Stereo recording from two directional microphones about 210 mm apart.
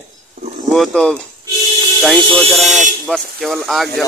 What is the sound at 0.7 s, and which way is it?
Speech, centre (ahead or behind).